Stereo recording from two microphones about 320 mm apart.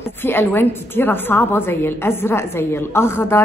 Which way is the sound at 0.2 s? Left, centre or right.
Centre.